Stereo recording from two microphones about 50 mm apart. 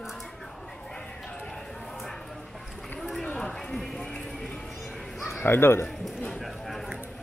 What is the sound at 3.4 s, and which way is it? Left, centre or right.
Run, centre.